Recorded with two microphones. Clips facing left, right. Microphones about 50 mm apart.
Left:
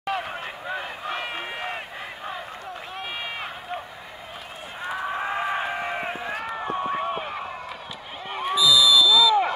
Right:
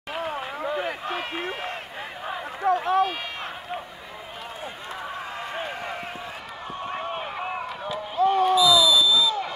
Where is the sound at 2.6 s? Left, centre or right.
Right.